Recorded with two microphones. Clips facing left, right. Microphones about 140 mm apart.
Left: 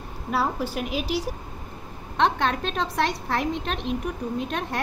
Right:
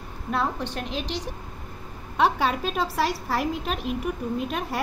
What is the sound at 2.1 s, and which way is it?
A woman's voice, 5° right (ahead or behind).